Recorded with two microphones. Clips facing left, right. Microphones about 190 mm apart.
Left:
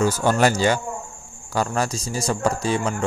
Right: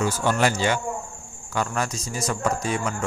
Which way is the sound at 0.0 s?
40° left (ahead or behind).